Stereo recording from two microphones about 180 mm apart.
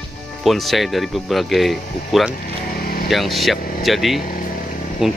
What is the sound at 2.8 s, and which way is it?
Vehicle, 55° left (ahead or behind).